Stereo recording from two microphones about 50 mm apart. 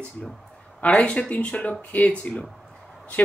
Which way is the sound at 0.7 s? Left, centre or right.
Left.